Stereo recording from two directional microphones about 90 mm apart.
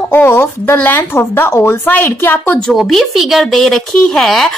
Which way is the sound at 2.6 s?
5° left (ahead or behind).